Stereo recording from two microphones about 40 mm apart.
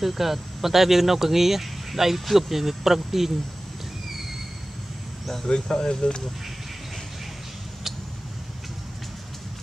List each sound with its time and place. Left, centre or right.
0.0 s speech: centre
5.5 s speech: centre